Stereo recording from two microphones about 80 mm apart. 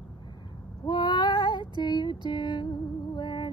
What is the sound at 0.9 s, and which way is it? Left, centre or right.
Female singing, left.